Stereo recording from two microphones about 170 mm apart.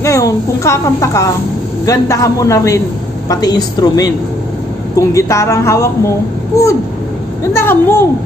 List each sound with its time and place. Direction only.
0.0 s a woman's voice: 20° left (ahead or behind)
7.5 s a woman's voice: 15° left (ahead or behind)